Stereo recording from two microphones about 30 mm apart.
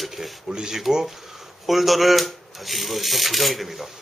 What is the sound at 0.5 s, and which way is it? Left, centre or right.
Speech, right.